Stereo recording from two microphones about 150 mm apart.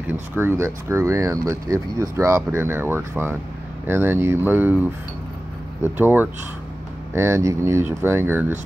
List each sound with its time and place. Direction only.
0.0 s speech: 15° right (ahead or behind)